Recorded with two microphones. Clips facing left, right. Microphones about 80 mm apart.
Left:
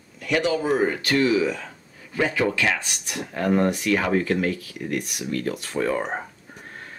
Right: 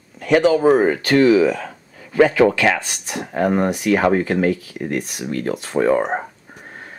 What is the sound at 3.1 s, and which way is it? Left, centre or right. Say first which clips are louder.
Speech: right 4 dB; right.